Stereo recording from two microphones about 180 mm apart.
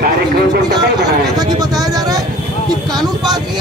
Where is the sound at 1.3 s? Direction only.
20° right (ahead or behind).